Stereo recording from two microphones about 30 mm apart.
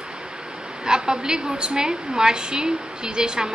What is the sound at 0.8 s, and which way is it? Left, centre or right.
A woman's voice, right.